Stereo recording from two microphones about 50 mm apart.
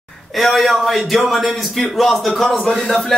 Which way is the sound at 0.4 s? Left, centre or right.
Centre.